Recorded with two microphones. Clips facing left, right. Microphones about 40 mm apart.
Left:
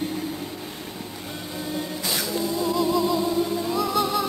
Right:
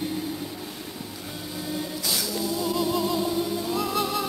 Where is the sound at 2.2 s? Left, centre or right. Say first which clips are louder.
Left 3 dB; left.